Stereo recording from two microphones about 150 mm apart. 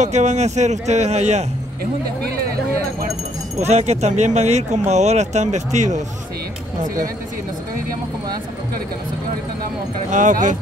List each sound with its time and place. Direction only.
0.0 s speech: 50° right (ahead or behind)
3.5 s speech: 45° right (ahead or behind)
10.1 s speech: 60° right (ahead or behind)